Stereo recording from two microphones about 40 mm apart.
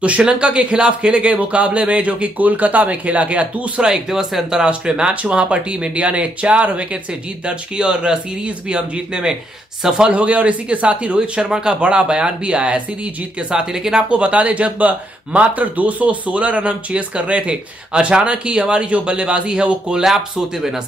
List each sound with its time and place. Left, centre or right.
0.2 s speech: right
3.8 s speech: centre
5.1 s speech: right
7.4 s speech: right
10.1 s speech: right
13.5 s speech: centre
14.0 s speech: right